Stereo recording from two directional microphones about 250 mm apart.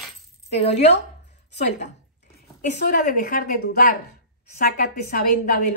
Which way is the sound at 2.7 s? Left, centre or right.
Left.